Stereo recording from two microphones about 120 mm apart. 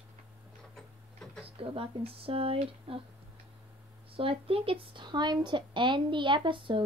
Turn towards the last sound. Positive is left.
turn(degrees=-45)  # may be behind; listen again after turning